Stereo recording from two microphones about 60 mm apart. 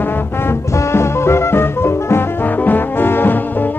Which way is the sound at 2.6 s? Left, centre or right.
Left.